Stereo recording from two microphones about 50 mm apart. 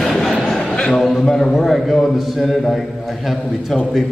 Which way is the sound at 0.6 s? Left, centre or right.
Centre.